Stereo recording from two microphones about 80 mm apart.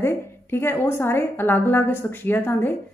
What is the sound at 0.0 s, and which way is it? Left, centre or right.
Speech, left.